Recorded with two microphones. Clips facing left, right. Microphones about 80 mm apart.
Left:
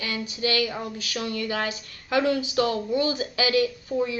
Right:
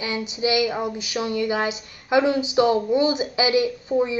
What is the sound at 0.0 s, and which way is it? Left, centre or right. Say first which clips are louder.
Speech: right 4 dB; centre.